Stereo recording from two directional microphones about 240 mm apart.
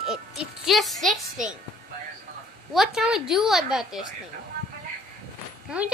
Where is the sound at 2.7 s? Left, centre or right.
Centre.